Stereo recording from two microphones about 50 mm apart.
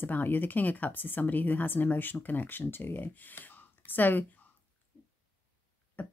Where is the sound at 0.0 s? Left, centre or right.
Left.